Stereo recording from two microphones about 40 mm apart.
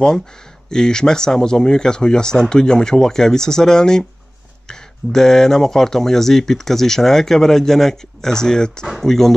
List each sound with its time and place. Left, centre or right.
0.7 s speech: centre